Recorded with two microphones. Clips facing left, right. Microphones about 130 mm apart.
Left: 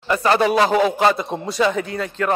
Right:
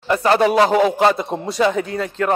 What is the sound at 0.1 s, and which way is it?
Speech, 30° right (ahead or behind).